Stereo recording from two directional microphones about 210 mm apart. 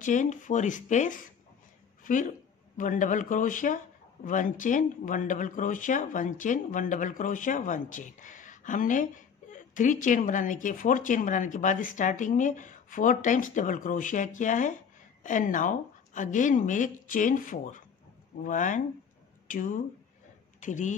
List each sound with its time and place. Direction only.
0.0 s speech: 35° left (ahead or behind)